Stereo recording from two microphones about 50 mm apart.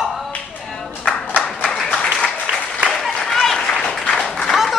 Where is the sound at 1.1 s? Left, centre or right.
Left.